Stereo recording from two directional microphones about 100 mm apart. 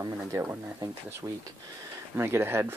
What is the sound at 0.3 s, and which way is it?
Speech, 20° right (ahead or behind).